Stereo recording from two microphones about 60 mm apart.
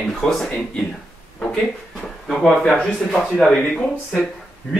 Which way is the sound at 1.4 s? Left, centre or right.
Centre.